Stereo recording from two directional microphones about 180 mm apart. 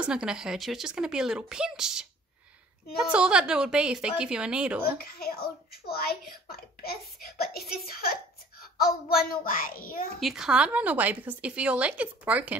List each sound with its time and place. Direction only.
0.0 s speech: 5° right (ahead or behind)
4.8 s a child's voice: 55° left (ahead or behind)
10.2 s speech: 5° right (ahead or behind)